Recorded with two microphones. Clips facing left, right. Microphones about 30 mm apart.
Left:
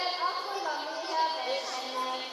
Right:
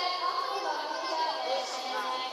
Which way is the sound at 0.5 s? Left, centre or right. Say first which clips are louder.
Right 1 dB; right.